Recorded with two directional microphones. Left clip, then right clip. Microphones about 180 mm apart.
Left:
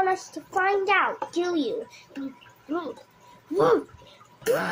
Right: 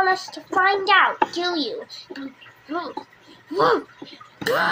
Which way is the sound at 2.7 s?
15° left (ahead or behind).